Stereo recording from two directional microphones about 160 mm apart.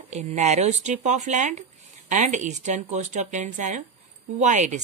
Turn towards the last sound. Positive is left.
turn(degrees=-50)  # may be behind; listen again after turning